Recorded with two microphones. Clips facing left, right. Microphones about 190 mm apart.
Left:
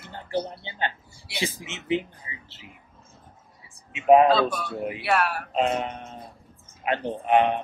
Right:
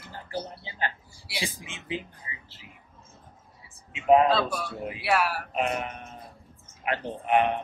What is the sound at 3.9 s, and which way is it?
Speech, 20° left (ahead or behind).